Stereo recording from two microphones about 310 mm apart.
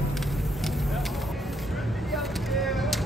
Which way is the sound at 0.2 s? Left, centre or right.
Centre.